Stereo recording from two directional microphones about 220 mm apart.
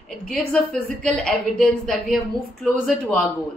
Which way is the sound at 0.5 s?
5° left (ahead or behind).